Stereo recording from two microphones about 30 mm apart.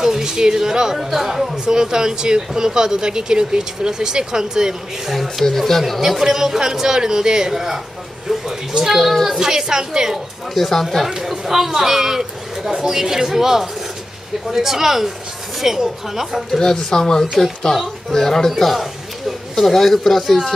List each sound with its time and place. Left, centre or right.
0.0 s speech: centre
1.8 s speech: right
5.4 s speech: centre
5.9 s speech: centre
9.3 s speech: centre
10.5 s speech: centre
11.1 s speech: centre
16.5 s speech: centre
19.5 s speech: centre